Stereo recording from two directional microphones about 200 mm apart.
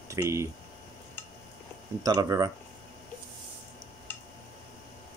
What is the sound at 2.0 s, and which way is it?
Speech, 20° right (ahead or behind).